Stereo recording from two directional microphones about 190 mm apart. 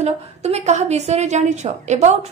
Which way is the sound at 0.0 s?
35° right (ahead or behind).